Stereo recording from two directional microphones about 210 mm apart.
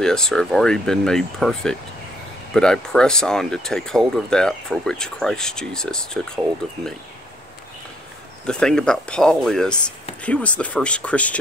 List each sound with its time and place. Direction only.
0.0 s speech: 5° left (ahead or behind)
8.5 s speech: 5° left (ahead or behind)